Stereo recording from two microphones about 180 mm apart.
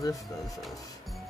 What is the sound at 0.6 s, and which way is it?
Music, centre (ahead or behind).